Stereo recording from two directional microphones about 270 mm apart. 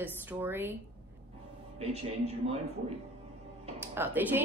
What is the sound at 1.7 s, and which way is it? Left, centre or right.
Speech, right.